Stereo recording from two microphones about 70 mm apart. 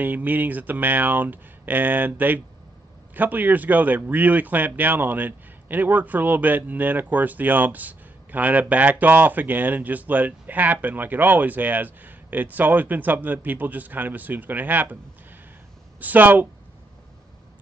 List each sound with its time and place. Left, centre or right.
0.0 s speech: right
16.0 s speech: right